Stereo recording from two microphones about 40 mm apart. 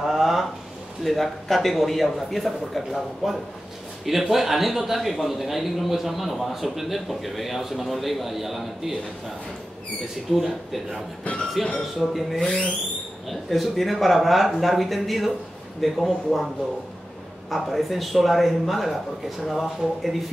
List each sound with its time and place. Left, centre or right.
0.0 s a sound: centre
1.0 s a man's voice: centre
10.3 s a man's voice: centre
12.4 s speech: centre
13.3 s a man's voice: centre
17.5 s a man's voice: centre